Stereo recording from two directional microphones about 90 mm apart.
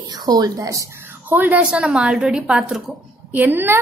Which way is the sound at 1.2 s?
20° right (ahead or behind).